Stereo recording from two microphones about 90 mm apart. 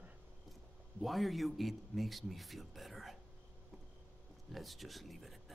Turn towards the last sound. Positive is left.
turn(degrees=0)  # may be behind; listen again after turning